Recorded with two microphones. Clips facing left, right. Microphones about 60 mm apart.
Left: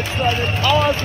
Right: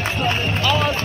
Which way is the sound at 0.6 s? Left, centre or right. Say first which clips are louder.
Left 4 dB; centre.